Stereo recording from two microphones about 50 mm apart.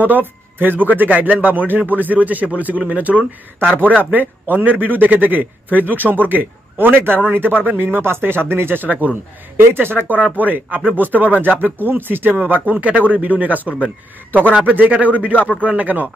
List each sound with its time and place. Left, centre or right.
0.0 s a man's voice: right
8.8 s a man's voice: right
9.6 s a man's voice: right